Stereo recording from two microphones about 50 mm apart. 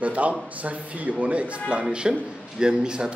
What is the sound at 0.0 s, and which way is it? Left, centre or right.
A man's voice, right.